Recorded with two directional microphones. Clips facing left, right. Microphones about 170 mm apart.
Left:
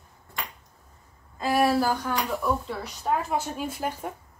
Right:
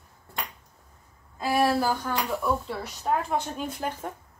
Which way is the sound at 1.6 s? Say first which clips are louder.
Left 1 dB; centre (ahead or behind).